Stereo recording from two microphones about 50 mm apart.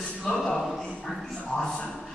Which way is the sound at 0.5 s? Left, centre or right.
Centre.